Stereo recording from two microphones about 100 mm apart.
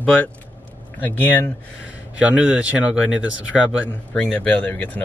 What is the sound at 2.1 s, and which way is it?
Speech, 15° right (ahead or behind).